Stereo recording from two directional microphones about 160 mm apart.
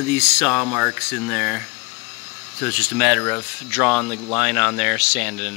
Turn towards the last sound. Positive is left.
turn(degrees=-5)  # may be behind; listen again after turning